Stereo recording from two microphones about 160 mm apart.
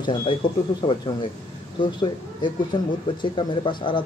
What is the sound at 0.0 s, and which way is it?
A man's voice, 30° left (ahead or behind).